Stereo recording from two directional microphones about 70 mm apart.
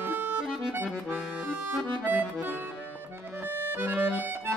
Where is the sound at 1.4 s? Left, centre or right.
Right.